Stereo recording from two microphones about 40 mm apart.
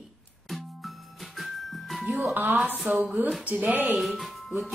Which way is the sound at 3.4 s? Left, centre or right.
Right.